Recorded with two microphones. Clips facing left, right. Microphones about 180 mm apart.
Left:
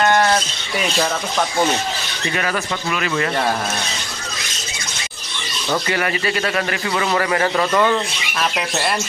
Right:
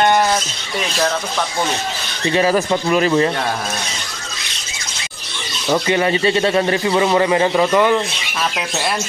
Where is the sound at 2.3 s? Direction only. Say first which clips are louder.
Right 8 dB; 30° right (ahead or behind).